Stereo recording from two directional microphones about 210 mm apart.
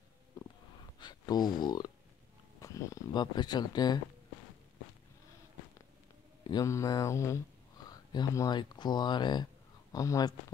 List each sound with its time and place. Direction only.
0.9 s speech: 20° left (ahead or behind)
6.4 s speech: 15° left (ahead or behind)